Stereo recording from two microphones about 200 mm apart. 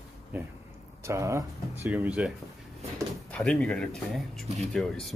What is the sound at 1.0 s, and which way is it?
Speech, 15° right (ahead or behind).